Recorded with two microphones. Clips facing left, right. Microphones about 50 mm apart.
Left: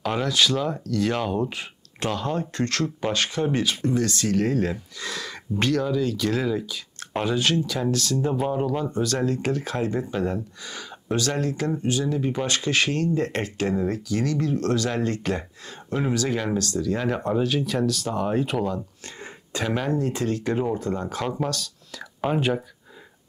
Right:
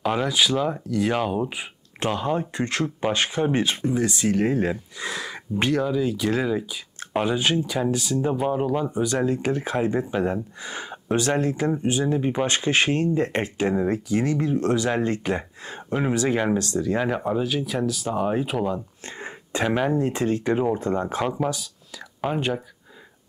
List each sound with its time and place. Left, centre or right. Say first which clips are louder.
0.0 s speech: right 1 dB; centre
3.8 s speech: right 1 dB; centre
17.0 s speech: even; centre
19.0 s speech: right 4 dB; right
19.7 s speech: right 2 dB; centre
20.0 s speech: right 2 dB; right
21.3 s speech: right 2 dB; centre
22.2 s speech: left 2 dB; centre